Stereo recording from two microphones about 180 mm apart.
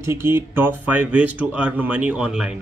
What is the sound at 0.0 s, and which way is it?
Speech, 15° right (ahead or behind).